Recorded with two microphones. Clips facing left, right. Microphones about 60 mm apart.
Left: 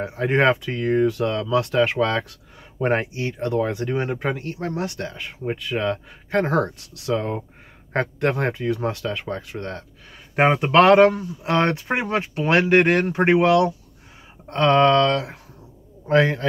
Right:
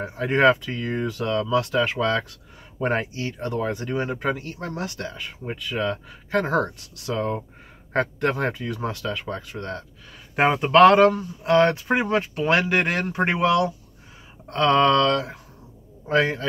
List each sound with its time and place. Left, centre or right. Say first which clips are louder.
0.0 s speech: even; left
7.9 s speech: left 1 dB; left